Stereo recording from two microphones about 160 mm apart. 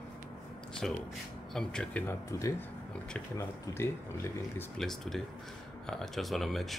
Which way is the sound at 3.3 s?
20° left (ahead or behind).